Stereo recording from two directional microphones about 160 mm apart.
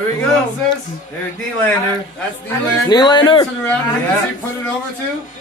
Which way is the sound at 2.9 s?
25° left (ahead or behind).